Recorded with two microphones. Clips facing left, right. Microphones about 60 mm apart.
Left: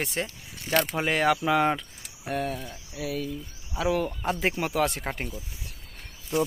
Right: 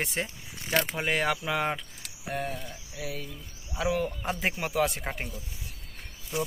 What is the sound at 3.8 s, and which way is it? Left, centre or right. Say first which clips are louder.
Speech: left 2 dB; centre.